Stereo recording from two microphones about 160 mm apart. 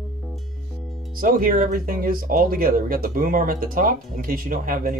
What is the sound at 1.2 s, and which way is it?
Speech, 60° right (ahead or behind).